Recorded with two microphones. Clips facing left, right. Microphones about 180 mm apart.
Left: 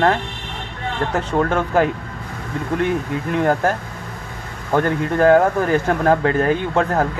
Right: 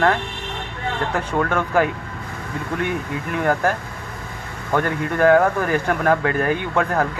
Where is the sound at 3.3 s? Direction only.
20° left (ahead or behind).